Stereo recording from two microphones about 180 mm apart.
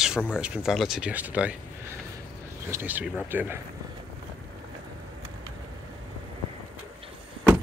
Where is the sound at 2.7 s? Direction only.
10° right (ahead or behind).